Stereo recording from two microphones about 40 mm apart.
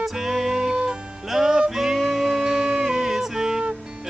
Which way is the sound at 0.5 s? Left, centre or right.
Right.